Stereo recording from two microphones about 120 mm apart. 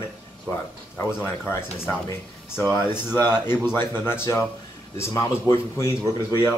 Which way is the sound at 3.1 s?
20° left (ahead or behind).